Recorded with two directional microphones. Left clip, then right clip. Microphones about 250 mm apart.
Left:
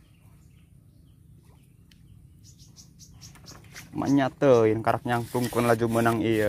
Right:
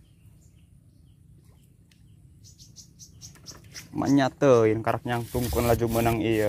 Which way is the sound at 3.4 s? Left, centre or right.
Centre.